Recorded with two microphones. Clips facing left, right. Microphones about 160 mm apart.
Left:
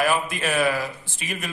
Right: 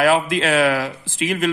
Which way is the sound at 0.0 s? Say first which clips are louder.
Right 6 dB; 90° right.